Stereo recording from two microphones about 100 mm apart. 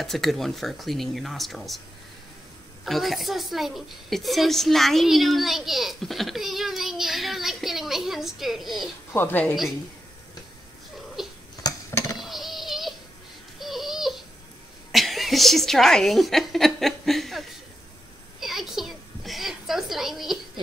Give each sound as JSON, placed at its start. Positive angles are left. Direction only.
{"t": 0.0, "sound": "a woman's voice", "side_deg": 0}
{"t": 2.8, "sound": "a woman's voice", "side_deg": 0}
{"t": 9.1, "sound": "a woman's voice", "side_deg": 20}
{"t": 11.2, "sound": "cat", "side_deg": 0}
{"t": 11.6, "sound": "a sound", "side_deg": 40}
{"t": 12.2, "sound": "a sound", "side_deg": 0}
{"t": 13.6, "sound": "babbling", "side_deg": 0}
{"t": 14.9, "sound": "a woman's voice", "side_deg": 0}
{"t": 18.4, "sound": "a sound", "side_deg": 0}